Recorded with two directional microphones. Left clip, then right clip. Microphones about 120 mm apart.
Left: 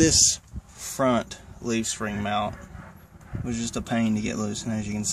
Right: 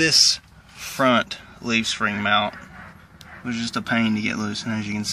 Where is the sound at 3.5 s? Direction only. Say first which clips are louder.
Right 5 dB; 30° left (ahead or behind).